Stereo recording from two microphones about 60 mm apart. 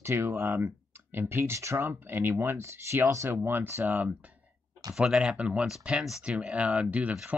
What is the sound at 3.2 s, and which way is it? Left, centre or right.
Speech, right.